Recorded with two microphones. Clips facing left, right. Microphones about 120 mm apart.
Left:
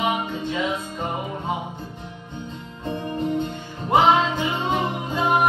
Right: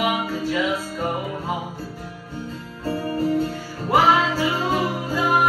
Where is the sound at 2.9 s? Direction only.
20° left (ahead or behind).